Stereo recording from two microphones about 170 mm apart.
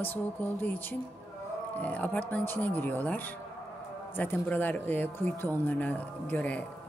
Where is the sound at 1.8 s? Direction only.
10° left (ahead or behind).